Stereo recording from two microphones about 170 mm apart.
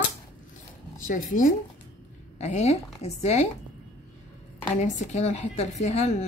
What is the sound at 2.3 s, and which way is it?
A woman's voice, 40° left (ahead or behind).